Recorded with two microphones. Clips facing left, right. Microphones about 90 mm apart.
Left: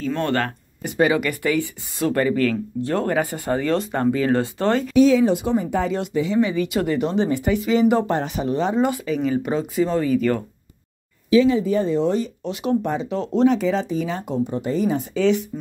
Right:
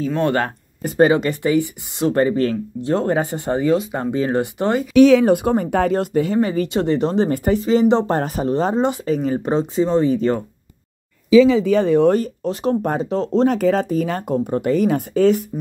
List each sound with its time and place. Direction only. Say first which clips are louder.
0.1 s speech: right 2 dB; 15° right (ahead or behind)
0.8 s speech: right 4 dB; 40° right (ahead or behind); by 3.7 s 25° right (ahead or behind)
3.7 s speech: right 3 dB; 5° right (ahead or behind)
4.0 s speech: even; 20° right (ahead or behind)
4.9 s speech: right 5 dB; 70° right (ahead or behind); by 6.7 s 45° right (ahead or behind)
6.7 s speech: right 3 dB; 30° right (ahead or behind)
7.2 s speech: right 3 dB; 45° right (ahead or behind)
8.1 s speech: right 3 dB; 40° right (ahead or behind)
11.5 s speech: right 5 dB; 90° right; by 12.3 s 60° right (ahead or behind)
12.4 s speech: right 2 dB; 45° right (ahead or behind)
13.6 s speech: right 4 dB; 50° right (ahead or behind)